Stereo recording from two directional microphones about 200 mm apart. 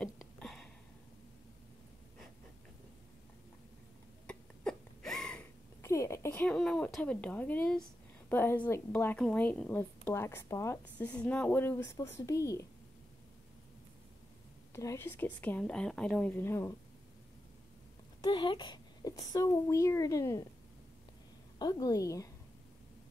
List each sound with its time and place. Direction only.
0.0 s a sound: 5° left (ahead or behind)
4.3 s a sound: 5° left (ahead or behind)
8.3 s a woman's voice: 10° left (ahead or behind)
14.7 s a woman's voice: 15° left (ahead or behind)
18.2 s a woman's voice: 20° left (ahead or behind)
21.5 s a woman's voice: 20° left (ahead or behind)